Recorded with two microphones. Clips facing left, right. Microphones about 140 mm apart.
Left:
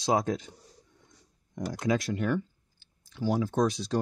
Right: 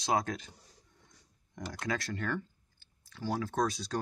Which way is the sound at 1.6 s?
20° left (ahead or behind).